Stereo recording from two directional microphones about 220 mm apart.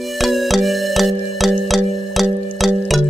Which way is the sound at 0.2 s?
Centre (ahead or behind).